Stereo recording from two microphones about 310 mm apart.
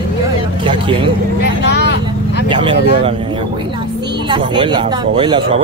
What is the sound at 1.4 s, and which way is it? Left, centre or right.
Vehicle, left.